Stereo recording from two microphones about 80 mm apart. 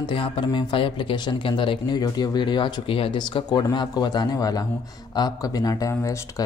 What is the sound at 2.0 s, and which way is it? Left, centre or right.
Speech, left.